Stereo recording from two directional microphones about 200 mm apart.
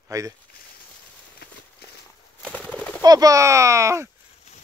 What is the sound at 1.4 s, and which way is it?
Clip-clop, 50° left (ahead or behind).